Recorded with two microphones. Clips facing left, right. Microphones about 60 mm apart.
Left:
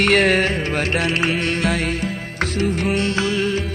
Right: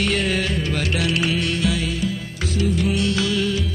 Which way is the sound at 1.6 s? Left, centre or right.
Left.